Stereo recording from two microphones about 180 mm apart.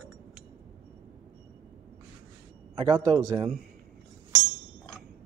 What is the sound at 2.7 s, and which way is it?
Speech, 30° right (ahead or behind).